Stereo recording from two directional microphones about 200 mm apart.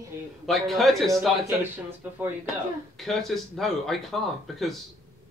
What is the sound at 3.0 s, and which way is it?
Speech, centre (ahead or behind).